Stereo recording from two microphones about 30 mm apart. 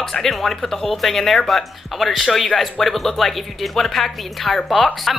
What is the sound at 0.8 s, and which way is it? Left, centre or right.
Speech, centre.